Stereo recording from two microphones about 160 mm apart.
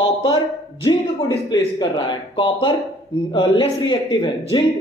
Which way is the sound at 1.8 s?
30° left (ahead or behind).